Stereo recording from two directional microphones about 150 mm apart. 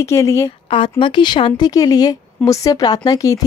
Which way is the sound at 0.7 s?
35° left (ahead or behind).